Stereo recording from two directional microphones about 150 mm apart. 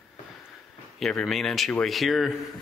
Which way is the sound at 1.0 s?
Centre (ahead or behind).